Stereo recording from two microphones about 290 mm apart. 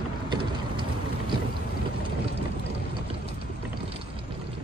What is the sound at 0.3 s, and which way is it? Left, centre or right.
Mechanisms, centre.